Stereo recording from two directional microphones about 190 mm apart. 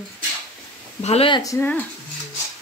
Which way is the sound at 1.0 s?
30° left (ahead or behind).